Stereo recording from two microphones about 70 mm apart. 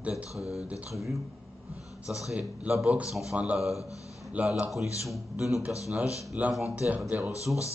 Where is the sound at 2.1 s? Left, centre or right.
Centre.